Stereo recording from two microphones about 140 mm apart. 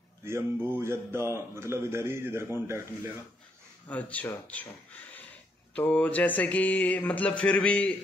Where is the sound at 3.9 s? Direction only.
10° left (ahead or behind).